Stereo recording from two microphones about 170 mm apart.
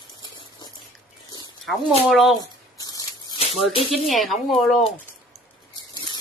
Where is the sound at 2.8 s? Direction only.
20° left (ahead or behind).